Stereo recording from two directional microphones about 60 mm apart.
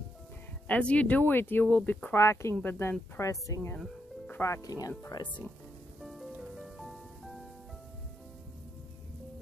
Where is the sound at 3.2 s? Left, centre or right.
Left.